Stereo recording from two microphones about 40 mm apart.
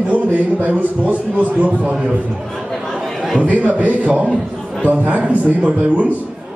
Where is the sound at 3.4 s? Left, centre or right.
Right.